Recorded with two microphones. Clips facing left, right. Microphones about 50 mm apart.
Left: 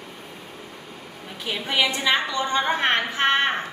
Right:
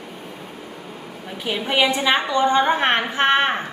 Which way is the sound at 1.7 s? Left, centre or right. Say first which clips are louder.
Right 3 dB; right.